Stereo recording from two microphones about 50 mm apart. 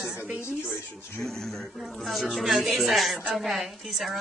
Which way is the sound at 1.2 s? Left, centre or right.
Centre.